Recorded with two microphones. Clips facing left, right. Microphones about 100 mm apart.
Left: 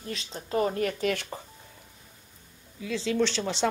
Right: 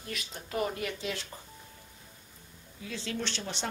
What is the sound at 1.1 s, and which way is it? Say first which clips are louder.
Speech: left 7 dB; 65° left (ahead or behind).